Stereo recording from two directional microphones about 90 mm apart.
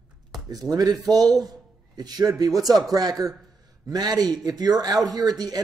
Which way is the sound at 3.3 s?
Centre (ahead or behind).